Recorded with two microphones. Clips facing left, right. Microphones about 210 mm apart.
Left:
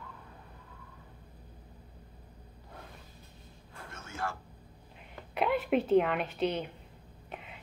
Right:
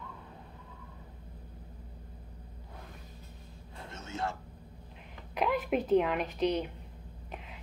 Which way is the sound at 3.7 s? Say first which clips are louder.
Right 2 dB; 20° right (ahead or behind).